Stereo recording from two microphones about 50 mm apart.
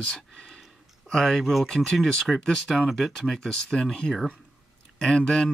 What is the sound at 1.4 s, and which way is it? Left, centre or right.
Speech, centre.